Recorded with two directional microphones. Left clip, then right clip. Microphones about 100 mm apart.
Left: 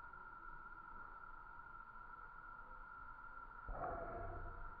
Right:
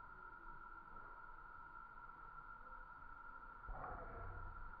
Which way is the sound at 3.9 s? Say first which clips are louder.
Left 7 dB; 65° left (ahead or behind).